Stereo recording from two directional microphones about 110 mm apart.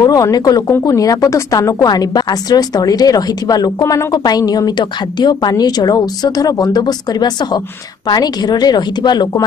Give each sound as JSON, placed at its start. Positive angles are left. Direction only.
{"t": 0.0, "sound": "a woman's voice", "side_deg": 35}